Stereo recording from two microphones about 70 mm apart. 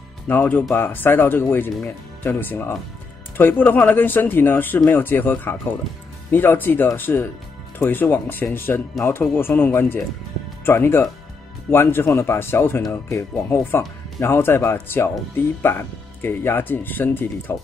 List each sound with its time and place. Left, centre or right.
0.3 s speech: left